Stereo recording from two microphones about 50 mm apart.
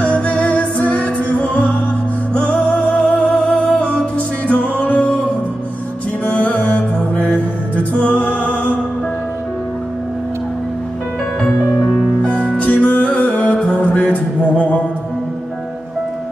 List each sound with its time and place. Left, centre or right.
0.0 s music: left
2.9 s music: left
6.2 s music: left
12.2 s music: left